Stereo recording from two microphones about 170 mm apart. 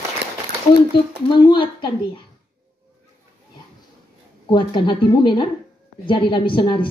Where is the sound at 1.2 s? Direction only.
30° left (ahead or behind).